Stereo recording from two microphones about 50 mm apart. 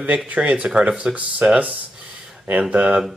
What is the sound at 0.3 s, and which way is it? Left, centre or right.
Speech, right.